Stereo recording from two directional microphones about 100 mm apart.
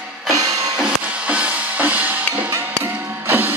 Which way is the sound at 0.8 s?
10° right (ahead or behind).